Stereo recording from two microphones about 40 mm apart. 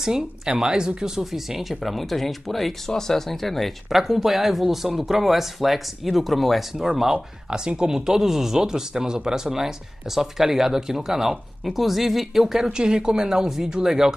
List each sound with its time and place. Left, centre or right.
0.6 s speech: centre
1.2 s speech: centre
7.4 s speech: right